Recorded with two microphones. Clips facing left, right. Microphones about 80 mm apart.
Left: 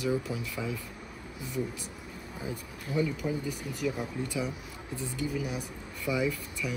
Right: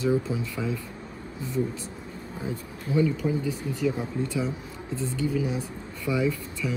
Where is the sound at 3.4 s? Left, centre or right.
Left.